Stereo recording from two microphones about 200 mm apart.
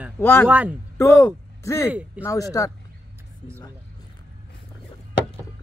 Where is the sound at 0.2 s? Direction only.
10° left (ahead or behind).